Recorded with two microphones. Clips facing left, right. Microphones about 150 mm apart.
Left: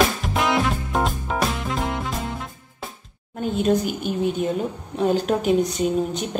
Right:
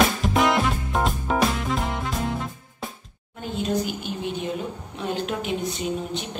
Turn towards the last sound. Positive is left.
turn(degrees=40)  # may be behind; listen again after turning